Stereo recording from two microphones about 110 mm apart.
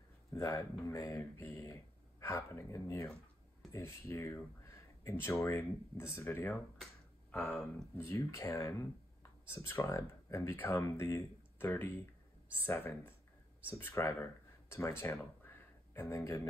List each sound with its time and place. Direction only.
0.3 s speech: 25° left (ahead or behind)
8.0 s speech: 25° left (ahead or behind)